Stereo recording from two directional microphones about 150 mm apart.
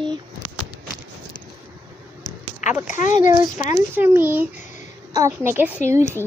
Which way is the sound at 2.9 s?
55° left (ahead or behind).